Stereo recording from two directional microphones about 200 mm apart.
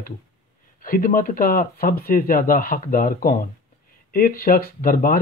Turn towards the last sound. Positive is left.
turn(degrees=45)  # may be behind; listen again after turning